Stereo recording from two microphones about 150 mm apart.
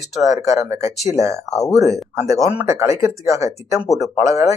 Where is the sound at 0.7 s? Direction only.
45° left (ahead or behind).